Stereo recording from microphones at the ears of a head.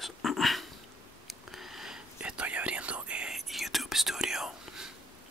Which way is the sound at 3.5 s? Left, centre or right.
Centre.